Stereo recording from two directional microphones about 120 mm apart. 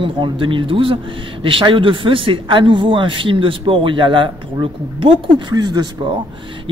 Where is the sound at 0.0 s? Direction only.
45° right (ahead or behind).